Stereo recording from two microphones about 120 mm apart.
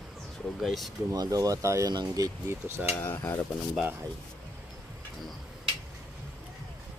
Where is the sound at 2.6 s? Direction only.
20° right (ahead or behind).